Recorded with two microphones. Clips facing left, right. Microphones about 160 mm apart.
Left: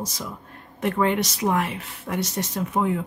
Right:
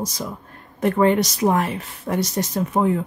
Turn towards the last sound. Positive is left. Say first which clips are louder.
# right 4 dB
turn(degrees=-35)  # may be behind; listen again after turning